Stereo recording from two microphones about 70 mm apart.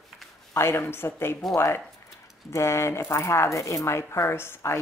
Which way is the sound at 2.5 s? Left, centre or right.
Left.